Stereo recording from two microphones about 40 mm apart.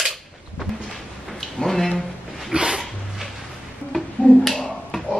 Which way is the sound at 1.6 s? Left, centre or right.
Centre.